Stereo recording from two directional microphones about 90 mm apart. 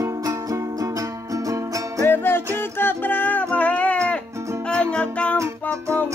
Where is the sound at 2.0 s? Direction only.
25° left (ahead or behind).